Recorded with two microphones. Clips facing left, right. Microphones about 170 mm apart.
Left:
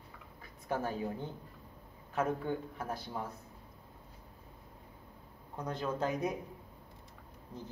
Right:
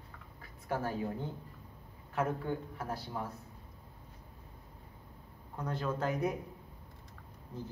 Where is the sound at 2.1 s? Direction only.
20° left (ahead or behind).